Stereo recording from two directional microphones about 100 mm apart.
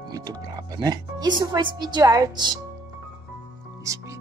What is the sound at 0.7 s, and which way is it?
Speech, 40° right (ahead or behind).